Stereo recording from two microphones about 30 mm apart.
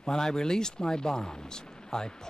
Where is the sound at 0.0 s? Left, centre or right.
Left.